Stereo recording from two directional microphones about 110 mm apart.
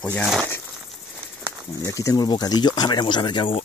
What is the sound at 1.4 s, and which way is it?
Speech, 25° left (ahead or behind).